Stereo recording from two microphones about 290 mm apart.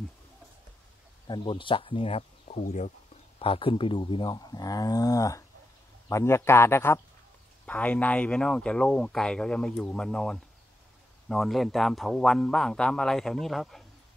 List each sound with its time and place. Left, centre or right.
1.2 s speech: centre